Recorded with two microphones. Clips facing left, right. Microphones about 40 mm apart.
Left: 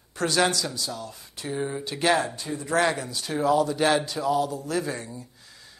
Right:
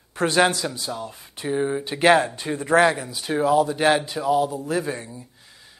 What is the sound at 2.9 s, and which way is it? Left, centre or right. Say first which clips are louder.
Speech: right 4 dB; centre.